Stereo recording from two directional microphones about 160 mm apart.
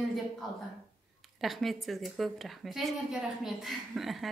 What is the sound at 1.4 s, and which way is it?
A woman's voice, centre (ahead or behind).